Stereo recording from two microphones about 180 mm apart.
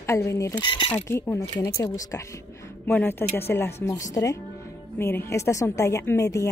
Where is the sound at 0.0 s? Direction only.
15° left (ahead or behind).